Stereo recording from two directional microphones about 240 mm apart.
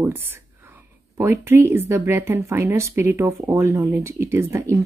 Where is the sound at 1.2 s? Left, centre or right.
Centre.